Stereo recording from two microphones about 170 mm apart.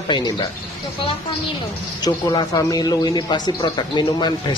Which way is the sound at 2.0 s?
20° left (ahead or behind).